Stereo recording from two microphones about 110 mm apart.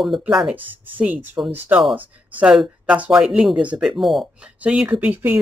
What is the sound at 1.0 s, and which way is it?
Speech, 20° right (ahead or behind).